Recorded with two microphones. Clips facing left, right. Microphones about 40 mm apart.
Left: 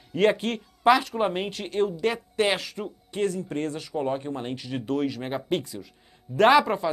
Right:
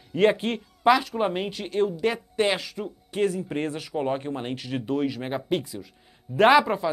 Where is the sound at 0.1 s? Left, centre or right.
Centre.